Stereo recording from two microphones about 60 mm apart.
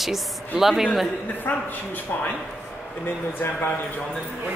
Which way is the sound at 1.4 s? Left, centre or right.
Left.